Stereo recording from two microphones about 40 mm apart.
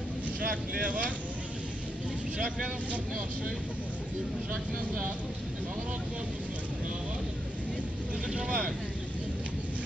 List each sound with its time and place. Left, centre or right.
0.7 s speech: right
8.3 s speech: right